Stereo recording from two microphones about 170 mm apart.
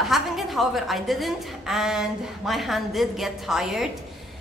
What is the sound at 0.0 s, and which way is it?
A woman's voice, centre (ahead or behind).